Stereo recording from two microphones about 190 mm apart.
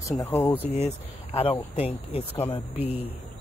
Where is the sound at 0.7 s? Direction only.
30° left (ahead or behind).